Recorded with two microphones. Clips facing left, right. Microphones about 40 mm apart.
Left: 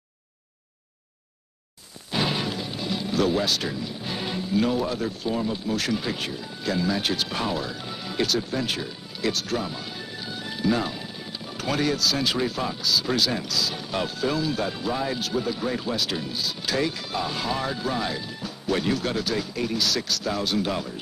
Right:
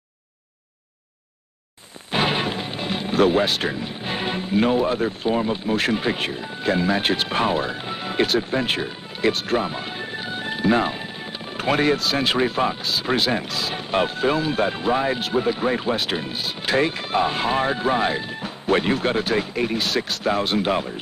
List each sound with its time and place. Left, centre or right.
2.0 s speech: right